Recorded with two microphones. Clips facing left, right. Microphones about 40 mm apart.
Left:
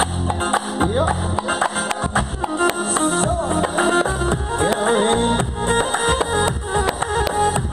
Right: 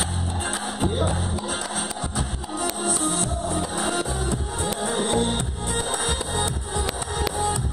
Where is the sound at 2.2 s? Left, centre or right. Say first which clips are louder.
Left 10 dB; left.